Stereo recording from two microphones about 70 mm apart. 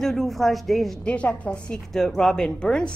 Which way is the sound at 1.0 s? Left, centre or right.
Centre.